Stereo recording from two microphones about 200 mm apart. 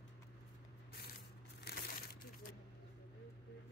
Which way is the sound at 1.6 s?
50° left (ahead or behind).